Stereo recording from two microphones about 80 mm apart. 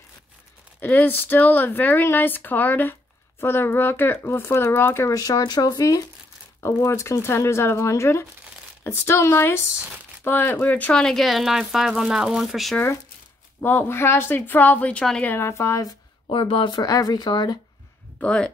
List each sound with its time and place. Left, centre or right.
0.7 s speech: left
5.1 s speech: left
6.6 s speech: left
9.8 s speech: centre
10.2 s speech: left
11.0 s speech: centre
13.6 s speech: left
15.2 s speech: left
16.3 s speech: left
16.8 s speech: left
18.2 s speech: centre